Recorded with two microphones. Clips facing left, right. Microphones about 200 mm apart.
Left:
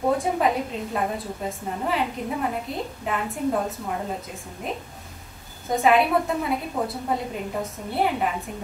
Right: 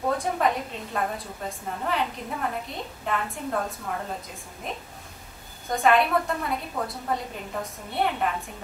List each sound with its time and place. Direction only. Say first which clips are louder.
0.1 s a woman's voice: left 1 dB; 5° left (ahead or behind)
5.7 s a woman's voice: left 2 dB; centre (ahead or behind)